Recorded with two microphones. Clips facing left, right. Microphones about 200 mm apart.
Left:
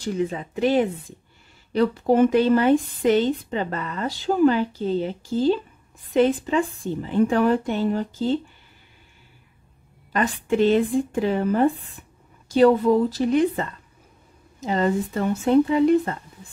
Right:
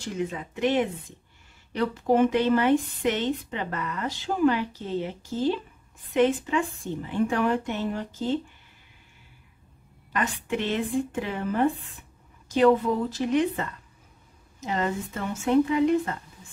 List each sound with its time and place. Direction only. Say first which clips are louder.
0.0 s speech: left 5 dB; 35° left (ahead or behind)
10.1 s speech: left 7 dB; 35° left (ahead or behind)